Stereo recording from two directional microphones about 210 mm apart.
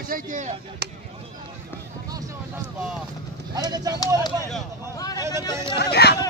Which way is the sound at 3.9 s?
20° left (ahead or behind).